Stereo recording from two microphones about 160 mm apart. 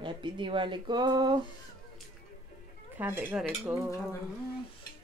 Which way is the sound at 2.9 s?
10° right (ahead or behind).